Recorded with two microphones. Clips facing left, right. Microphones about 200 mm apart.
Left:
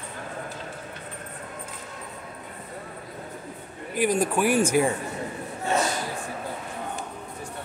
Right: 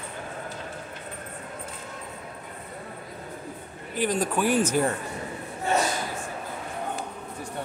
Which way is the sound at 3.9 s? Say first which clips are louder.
Left 2 dB; 10° left (ahead or behind).